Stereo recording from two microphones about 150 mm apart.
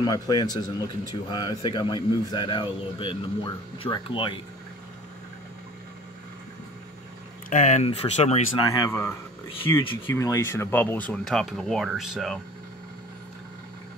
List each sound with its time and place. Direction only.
0.0 s speech: 25° left (ahead or behind)
7.4 s speech: 55° left (ahead or behind)
8.6 s speech: 20° left (ahead or behind); by 12.4 s centre (ahead or behind)